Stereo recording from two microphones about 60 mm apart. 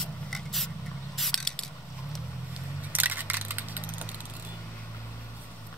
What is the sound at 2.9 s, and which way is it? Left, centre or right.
Single-lens reflex camera, right.